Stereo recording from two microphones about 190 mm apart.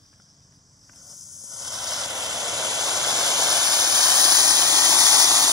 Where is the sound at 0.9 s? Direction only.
Centre (ahead or behind).